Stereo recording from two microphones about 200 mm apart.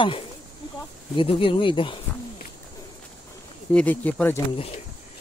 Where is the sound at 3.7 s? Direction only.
10° left (ahead or behind).